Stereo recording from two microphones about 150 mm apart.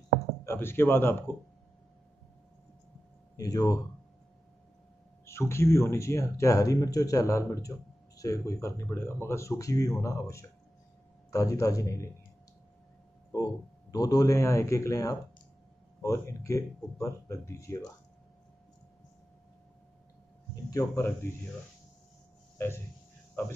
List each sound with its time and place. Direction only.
0.5 s speech: 15° left (ahead or behind)
3.3 s speech: 25° left (ahead or behind)
5.2 s speech: 20° left (ahead or behind)
13.3 s speech: 25° left (ahead or behind)
20.7 s speech: 20° left (ahead or behind)
23.4 s speech: 15° left (ahead or behind)